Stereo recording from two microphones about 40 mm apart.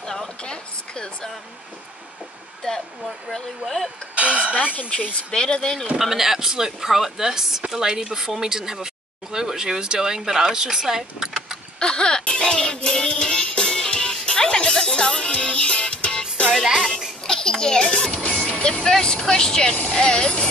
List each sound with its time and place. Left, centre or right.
0.0 s a sound: centre
0.4 s a sound: left
3.6 s speech: centre
4.1 s a sound: right
5.3 s speech: left
5.9 s speech: centre
11.8 s music: left
17.3 s a child's voice: centre
19.7 s speech: left
20.0 s speech: left